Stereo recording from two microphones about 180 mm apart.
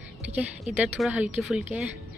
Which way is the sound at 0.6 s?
5° right (ahead or behind).